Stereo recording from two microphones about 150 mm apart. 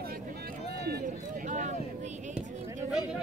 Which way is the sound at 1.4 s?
55° right (ahead or behind).